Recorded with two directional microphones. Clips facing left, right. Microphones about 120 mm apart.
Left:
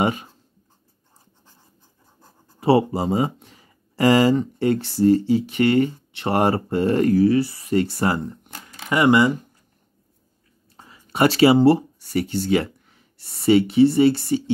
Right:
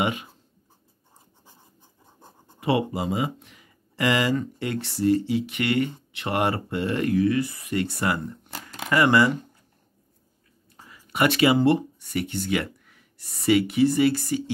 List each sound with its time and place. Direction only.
0.0 s speech: 35° left (ahead or behind)
2.6 s speech: 35° left (ahead or behind)
8.8 s speech: 20° left (ahead or behind)
10.9 s speech: 30° left (ahead or behind)